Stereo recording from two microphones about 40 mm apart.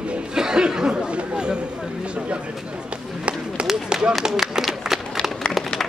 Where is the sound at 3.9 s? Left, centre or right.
Right.